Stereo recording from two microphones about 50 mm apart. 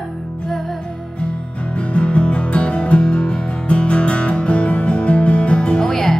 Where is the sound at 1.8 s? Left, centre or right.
Left.